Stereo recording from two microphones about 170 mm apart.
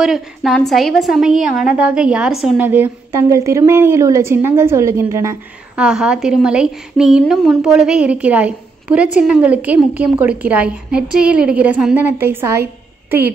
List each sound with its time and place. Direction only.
0.0 s a woman's voice: centre (ahead or behind); by 5.4 s 15° right (ahead or behind)
5.8 s a woman's voice: 5° right (ahead or behind)